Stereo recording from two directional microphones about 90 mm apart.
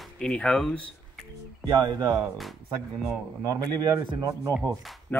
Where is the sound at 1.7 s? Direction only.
50° right (ahead or behind).